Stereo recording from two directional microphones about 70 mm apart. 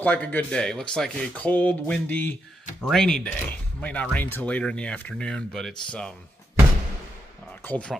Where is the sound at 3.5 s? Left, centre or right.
Left.